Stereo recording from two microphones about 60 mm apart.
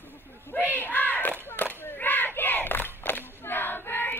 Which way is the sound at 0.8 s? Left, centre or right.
Left.